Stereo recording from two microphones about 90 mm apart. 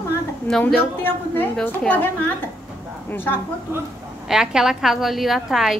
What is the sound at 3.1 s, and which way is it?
Speech, 20° left (ahead or behind).